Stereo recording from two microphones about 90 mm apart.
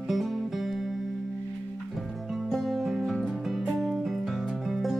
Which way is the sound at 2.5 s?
Centre (ahead or behind).